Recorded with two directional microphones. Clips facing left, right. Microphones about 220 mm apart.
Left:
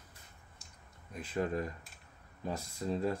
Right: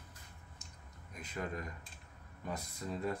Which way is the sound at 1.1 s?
30° left (ahead or behind).